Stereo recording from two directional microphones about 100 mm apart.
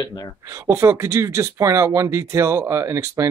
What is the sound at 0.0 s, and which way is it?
Speech, 40° left (ahead or behind).